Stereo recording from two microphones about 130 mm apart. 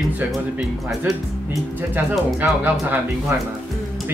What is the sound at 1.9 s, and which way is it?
Speech, 15° right (ahead or behind).